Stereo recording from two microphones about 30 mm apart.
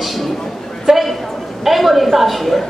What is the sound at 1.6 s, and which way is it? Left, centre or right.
A woman's voice, centre.